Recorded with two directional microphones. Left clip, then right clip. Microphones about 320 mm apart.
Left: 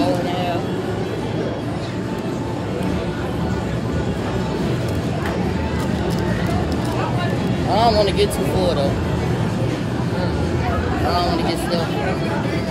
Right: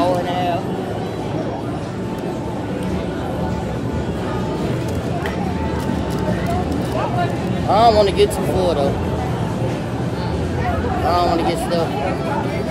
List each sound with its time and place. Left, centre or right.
7.7 s vehicle: centre
11.1 s speech: centre